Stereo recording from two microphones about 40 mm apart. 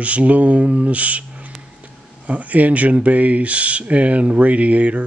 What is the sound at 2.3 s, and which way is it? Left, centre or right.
Speech, right.